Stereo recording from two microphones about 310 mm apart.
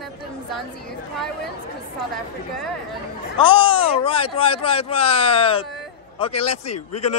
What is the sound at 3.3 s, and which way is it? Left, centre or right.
A man's voice, centre.